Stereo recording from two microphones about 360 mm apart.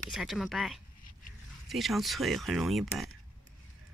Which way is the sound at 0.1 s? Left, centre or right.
Centre.